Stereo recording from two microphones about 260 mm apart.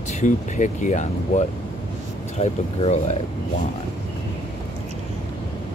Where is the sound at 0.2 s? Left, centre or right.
Left.